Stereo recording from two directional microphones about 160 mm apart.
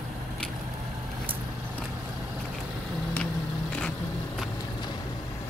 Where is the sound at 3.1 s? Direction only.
5° left (ahead or behind).